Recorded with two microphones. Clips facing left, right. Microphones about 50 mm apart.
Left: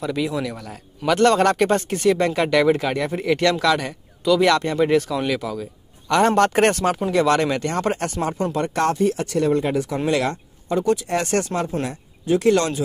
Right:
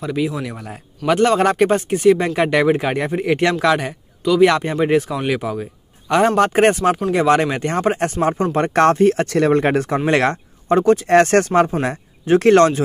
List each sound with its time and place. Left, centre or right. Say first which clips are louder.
0.0 s speech: right 2 dB; centre
4.2 s speech: right 4 dB; centre
4.5 s speech: right 1 dB; centre
6.0 s speech: right 2 dB; centre
8.0 s speech: right 5 dB; right